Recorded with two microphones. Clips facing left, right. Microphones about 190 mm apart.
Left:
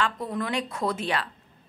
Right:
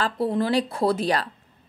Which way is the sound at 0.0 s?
30° right (ahead or behind).